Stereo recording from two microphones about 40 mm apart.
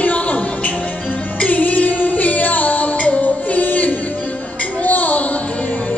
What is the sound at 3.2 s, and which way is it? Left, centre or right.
Music, left.